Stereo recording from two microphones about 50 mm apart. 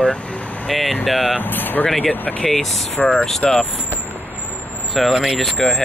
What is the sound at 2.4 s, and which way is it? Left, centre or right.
Speech, centre.